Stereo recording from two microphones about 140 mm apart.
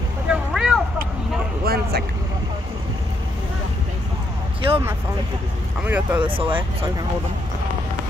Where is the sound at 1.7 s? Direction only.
90° right.